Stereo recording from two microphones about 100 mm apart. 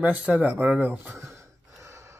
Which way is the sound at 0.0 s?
15° right (ahead or behind).